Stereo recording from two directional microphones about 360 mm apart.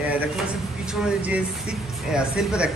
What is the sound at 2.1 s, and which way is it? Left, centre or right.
Speech, centre.